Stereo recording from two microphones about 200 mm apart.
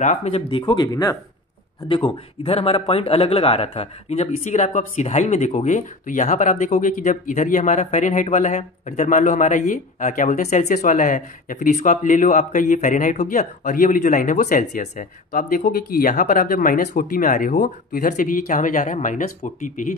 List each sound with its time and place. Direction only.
0.0 s speech: 35° left (ahead or behind)